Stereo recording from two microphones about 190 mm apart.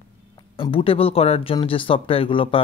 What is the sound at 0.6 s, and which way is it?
Speech, 30° left (ahead or behind).